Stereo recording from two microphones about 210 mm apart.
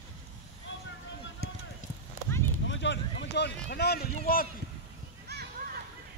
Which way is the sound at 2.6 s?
60° left (ahead or behind).